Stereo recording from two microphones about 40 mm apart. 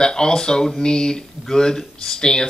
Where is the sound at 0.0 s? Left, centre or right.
Centre.